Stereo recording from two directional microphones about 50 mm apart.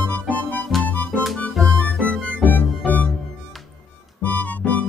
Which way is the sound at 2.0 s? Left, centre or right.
Left.